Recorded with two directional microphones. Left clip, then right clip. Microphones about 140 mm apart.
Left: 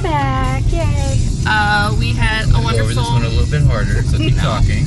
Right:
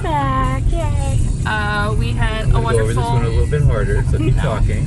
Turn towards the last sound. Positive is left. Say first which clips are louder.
# even
turn(degrees=-55)  # may be behind; listen again after turning